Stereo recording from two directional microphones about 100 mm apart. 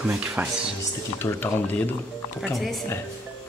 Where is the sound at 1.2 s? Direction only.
20° left (ahead or behind).